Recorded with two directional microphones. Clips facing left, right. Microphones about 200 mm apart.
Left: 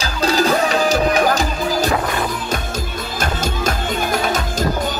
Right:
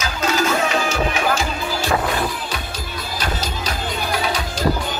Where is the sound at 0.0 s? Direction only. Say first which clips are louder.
Left 3 dB; 35° left (ahead or behind).